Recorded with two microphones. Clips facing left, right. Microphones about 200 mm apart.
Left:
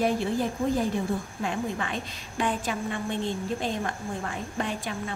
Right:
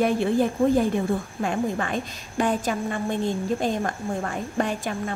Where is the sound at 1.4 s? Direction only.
45° right (ahead or behind).